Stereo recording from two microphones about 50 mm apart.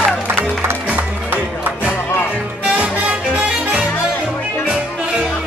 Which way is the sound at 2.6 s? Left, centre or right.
Right.